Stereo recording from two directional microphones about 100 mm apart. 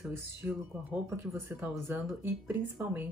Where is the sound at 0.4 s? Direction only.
25° right (ahead or behind).